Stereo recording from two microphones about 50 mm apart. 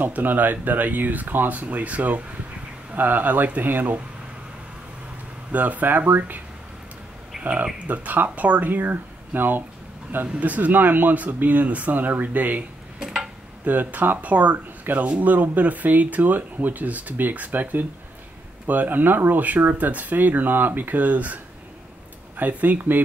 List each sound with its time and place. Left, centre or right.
0.0 s speech: right
5.5 s speech: right
7.3 s a sound: centre
7.8 s speech: right
13.0 s a sound: centre
13.7 s speech: right
22.4 s speech: right